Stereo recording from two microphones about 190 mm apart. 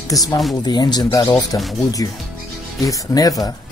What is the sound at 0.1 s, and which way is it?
Speech, 20° left (ahead or behind).